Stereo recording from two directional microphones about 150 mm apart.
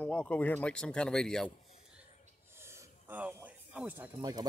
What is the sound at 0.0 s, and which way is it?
Speech, 10° left (ahead or behind).